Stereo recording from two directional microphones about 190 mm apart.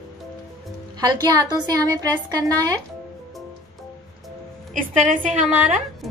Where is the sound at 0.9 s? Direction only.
20° right (ahead or behind).